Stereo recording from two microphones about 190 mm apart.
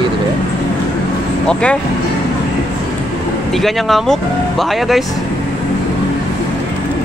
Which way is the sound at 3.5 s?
Centre (ahead or behind).